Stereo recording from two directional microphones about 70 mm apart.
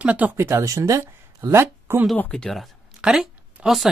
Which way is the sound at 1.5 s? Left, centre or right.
Right.